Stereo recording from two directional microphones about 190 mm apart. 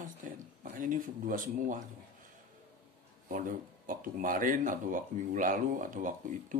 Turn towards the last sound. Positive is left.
turn(degrees=-45)  # may be behind; listen again after turning